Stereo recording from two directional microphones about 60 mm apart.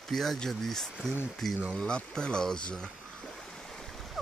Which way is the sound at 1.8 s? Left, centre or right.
Centre.